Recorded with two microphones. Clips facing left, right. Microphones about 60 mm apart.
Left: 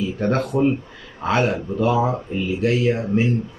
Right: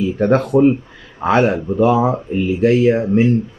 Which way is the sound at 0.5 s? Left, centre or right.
Centre.